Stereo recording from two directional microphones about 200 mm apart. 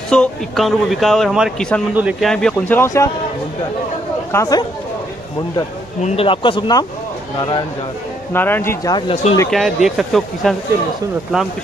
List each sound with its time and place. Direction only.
0.1 s a man's voice: centre (ahead or behind)
4.3 s speech: 15° left (ahead or behind)
6.0 s speech: 25° left (ahead or behind)
8.3 s speech: 10° left (ahead or behind)
8.9 s speech: 30° left (ahead or behind)
9.5 s a man's voice: centre (ahead or behind)